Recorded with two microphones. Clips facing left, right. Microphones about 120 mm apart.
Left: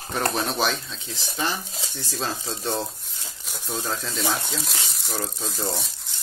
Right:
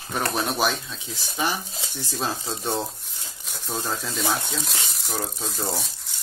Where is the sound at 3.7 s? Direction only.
10° right (ahead or behind).